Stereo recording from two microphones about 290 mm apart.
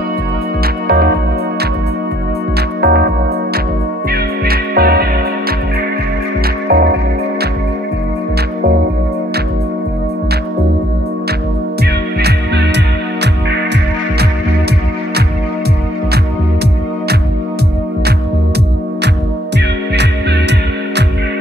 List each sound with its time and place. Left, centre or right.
0.8 s music: right
2.8 s music: right
4.1 s music: right
6.7 s music: right
12.2 s music: right